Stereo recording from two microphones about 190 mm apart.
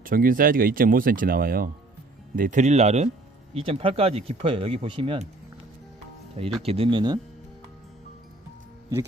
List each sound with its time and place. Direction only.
0.0 s speech: 50° right (ahead or behind); by 5.3 s 30° right (ahead or behind)
6.6 s speech: 30° right (ahead or behind)